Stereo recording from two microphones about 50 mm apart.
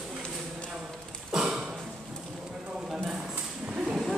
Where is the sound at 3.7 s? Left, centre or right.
Centre.